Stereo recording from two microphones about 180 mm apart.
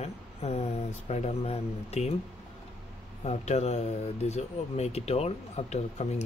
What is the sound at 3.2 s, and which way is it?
Speech, 40° left (ahead or behind).